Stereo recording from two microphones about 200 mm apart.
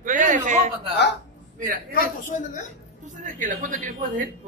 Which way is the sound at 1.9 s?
40° left (ahead or behind).